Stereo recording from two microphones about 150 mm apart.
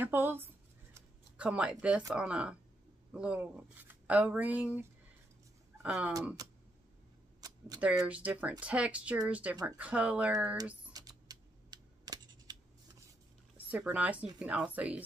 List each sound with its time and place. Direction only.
0.0 s speech: 15° right (ahead or behind)
7.3 s a sound: 25° right (ahead or behind)
8.1 s speech: 10° right (ahead or behind)
10.9 s typing: 25° right (ahead or behind)
13.7 s speech: 10° right (ahead or behind)